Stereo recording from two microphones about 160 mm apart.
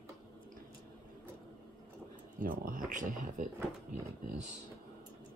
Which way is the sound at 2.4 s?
60° right (ahead or behind).